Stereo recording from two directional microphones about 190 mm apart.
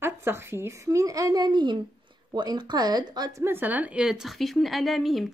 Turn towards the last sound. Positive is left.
turn(degrees=0)  # may be behind; listen again after turning